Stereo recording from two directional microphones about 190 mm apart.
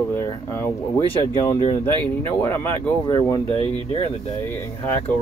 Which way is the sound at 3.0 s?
25° left (ahead or behind).